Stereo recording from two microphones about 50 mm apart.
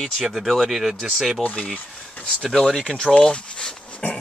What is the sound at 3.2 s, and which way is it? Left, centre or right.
Speech, left.